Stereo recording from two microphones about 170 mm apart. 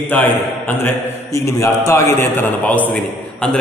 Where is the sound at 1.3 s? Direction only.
15° left (ahead or behind).